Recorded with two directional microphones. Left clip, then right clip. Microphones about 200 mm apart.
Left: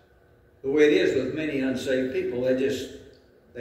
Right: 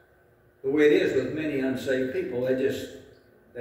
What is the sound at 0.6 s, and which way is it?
A man's voice, 5° right (ahead or behind).